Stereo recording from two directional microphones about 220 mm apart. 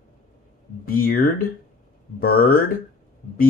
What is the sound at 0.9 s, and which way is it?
Speech, 40° left (ahead or behind).